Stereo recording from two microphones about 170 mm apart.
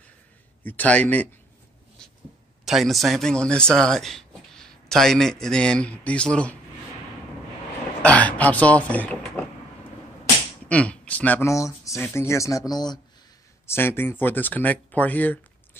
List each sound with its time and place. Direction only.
0.7 s speech: 10° left (ahead or behind)
2.6 s a man's voice: centre (ahead or behind)
8.0 s speech: 10° left (ahead or behind)
10.7 s speech: 5° left (ahead or behind); by 13.0 s 25° left (ahead or behind)
13.7 s speech: 15° left (ahead or behind)